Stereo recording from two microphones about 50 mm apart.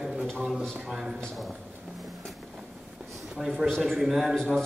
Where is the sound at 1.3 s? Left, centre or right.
Centre.